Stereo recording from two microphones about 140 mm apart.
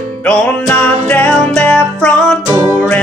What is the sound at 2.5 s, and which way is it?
Music, 20° right (ahead or behind).